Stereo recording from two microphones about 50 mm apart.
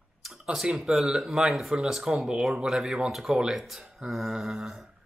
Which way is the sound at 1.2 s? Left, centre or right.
Centre.